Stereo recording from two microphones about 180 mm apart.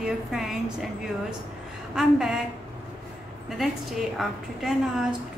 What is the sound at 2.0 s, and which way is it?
Speech, 5° right (ahead or behind).